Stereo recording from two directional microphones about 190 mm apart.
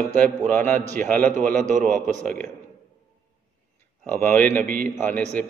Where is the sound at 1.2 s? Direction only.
40° right (ahead or behind).